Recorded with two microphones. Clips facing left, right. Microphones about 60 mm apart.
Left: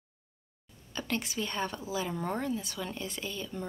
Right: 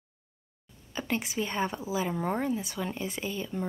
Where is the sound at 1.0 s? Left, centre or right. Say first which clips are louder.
Right 3 dB; centre.